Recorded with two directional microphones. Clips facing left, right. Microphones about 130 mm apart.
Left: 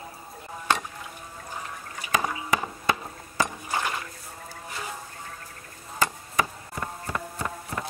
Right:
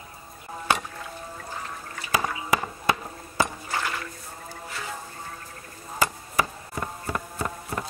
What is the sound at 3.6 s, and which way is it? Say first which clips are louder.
Dishes: left 1 dB; 15° left (ahead or behind).